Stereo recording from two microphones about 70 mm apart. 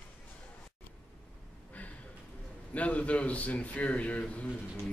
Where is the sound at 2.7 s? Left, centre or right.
Centre.